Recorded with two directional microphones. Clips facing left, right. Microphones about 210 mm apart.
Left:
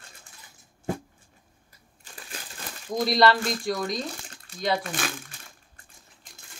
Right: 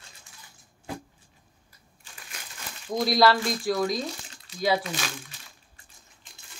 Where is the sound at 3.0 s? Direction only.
5° right (ahead or behind).